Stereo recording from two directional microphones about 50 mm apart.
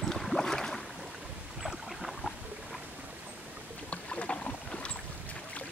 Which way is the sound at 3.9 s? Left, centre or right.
Left.